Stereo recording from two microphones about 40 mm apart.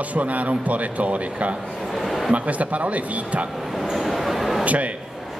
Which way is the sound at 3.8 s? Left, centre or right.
Centre.